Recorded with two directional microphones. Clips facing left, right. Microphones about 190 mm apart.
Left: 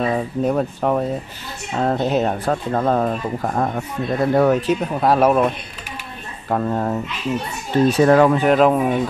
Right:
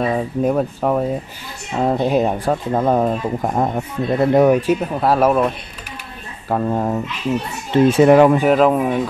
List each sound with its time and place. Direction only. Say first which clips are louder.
0.0 s speech: right 1 dB; 5° right (ahead or behind)
6.5 s speech: right 1 dB; 10° right (ahead or behind)
7.7 s speech: right 3 dB; 20° right (ahead or behind)
8.5 s speech: right 1 dB; centre (ahead or behind)